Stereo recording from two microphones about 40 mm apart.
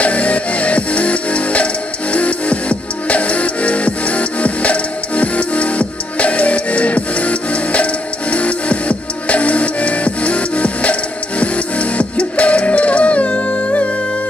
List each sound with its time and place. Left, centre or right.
0.0 s music: left